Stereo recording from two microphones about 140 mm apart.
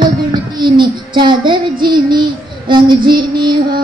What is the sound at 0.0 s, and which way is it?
Child singing, 30° right (ahead or behind).